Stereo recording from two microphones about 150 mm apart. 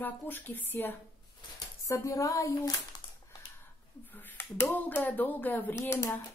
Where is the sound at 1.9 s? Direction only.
20° left (ahead or behind).